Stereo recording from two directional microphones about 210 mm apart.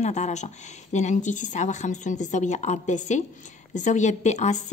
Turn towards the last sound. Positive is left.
turn(degrees=35)  # may be behind; listen again after turning